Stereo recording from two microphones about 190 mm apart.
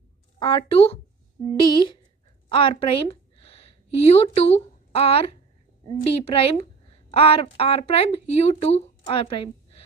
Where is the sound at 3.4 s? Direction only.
30° left (ahead or behind).